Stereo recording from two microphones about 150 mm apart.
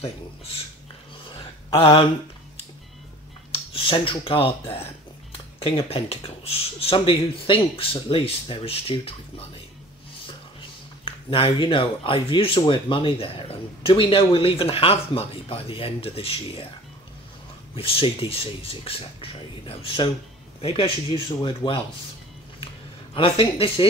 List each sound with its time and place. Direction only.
1.7 s speech: 35° left (ahead or behind)
3.7 s speech: 35° left (ahead or behind)
11.1 s speech: 40° left (ahead or behind)
17.7 s speech: 40° left (ahead or behind)
23.1 s speech: 35° left (ahead or behind)